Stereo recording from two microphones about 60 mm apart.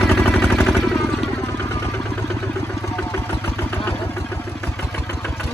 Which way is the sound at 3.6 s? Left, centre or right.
Left.